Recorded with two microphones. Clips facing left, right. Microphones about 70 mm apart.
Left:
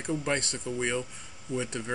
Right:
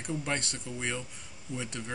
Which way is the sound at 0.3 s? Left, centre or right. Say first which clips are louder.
Left 4 dB; centre.